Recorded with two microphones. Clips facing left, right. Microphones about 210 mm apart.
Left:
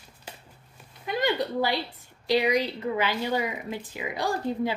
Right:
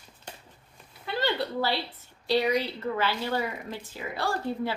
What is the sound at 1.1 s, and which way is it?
A woman's voice, 15° left (ahead or behind).